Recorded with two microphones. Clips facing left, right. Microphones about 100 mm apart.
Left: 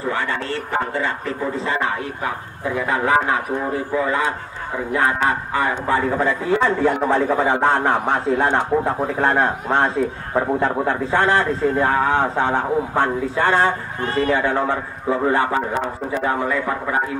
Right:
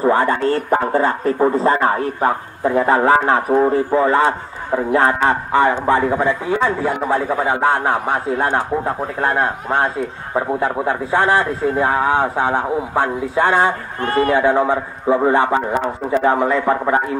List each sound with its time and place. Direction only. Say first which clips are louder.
0.0 s a man's voice: right 8 dB; 40° right (ahead or behind); by 13.7 s 15° right (ahead or behind)
14.0 s a man's voice: right 4 dB; 55° right (ahead or behind)
14.3 s a man's voice: right 6 dB; 15° right (ahead or behind)